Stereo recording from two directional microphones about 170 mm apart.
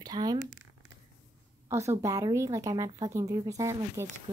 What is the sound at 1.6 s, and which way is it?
Speech, 15° right (ahead or behind).